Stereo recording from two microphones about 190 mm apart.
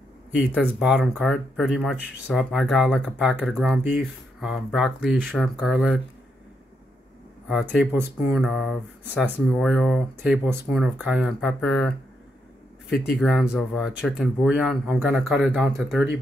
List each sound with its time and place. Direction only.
0.6 s speech: centre (ahead or behind)
7.9 s speech: 5° right (ahead or behind)
13.2 s speech: centre (ahead or behind)